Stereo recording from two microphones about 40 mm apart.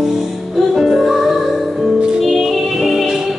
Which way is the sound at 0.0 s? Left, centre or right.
Centre.